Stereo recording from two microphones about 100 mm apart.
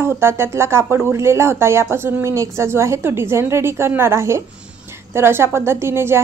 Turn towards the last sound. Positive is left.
turn(degrees=-25)  # may be behind; listen again after turning